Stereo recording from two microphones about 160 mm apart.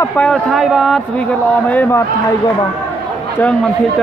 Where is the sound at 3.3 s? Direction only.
10° left (ahead or behind).